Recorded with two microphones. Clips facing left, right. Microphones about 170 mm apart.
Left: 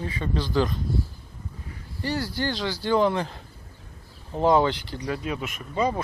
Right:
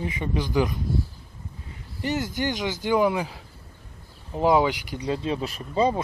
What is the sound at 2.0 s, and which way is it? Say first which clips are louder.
Speech: right 1 dB; 20° right (ahead or behind).